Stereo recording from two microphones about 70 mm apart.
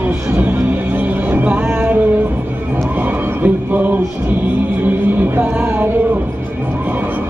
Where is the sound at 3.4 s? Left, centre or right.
Right.